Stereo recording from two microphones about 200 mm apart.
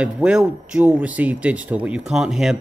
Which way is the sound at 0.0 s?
5° right (ahead or behind).